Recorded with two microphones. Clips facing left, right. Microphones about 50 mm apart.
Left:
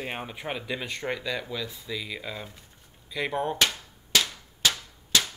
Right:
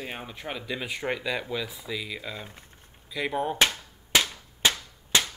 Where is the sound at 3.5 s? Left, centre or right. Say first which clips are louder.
Right 2 dB; right.